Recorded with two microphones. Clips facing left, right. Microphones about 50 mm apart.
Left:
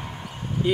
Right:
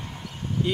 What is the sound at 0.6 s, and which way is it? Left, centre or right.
Speech, centre.